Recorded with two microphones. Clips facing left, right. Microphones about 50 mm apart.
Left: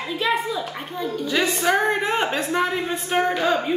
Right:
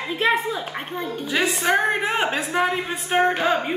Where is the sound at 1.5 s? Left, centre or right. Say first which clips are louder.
Even; centre.